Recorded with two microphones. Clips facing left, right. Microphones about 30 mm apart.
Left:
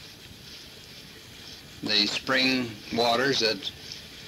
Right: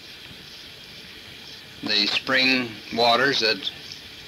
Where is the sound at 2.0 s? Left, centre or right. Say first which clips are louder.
Right 4 dB; right.